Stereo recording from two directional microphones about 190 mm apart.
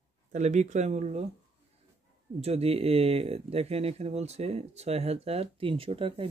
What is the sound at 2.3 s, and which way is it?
Speech, 35° right (ahead or behind).